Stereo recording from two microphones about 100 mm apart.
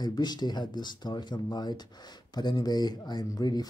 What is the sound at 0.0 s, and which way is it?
Speech, 45° left (ahead or behind).